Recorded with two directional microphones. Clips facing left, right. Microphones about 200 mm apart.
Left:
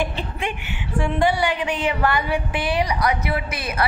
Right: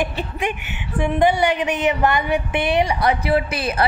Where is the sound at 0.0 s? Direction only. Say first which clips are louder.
Right 2 dB; 15° right (ahead or behind).